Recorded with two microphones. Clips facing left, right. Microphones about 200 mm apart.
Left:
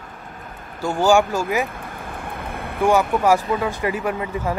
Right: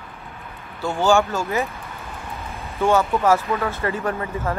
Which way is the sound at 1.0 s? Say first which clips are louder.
Left 2 dB; 15° left (ahead or behind).